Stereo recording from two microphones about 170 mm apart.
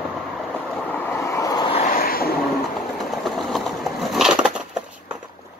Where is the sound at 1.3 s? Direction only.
20° left (ahead or behind).